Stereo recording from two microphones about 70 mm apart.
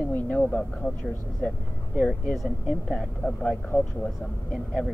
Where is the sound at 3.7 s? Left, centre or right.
Left.